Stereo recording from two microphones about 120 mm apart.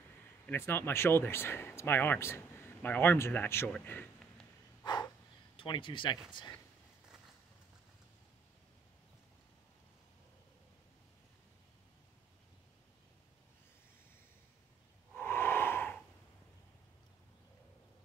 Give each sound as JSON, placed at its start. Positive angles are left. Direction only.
{"t": 0.5, "sound": "a man's voice", "side_deg": 20}
{"t": 4.8, "sound": "snort", "side_deg": 35}
{"t": 5.6, "sound": "speech", "side_deg": 45}
{"t": 15.1, "sound": "breathing", "side_deg": 20}